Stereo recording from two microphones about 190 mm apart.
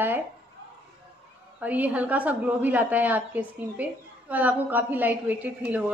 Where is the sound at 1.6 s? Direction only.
10° right (ahead or behind).